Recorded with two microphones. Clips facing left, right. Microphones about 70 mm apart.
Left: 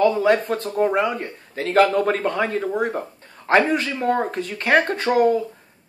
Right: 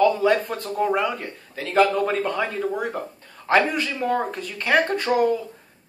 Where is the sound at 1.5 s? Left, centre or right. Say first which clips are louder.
Left 2 dB; left.